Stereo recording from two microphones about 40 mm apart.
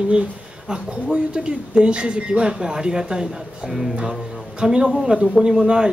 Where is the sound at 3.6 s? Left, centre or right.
Centre.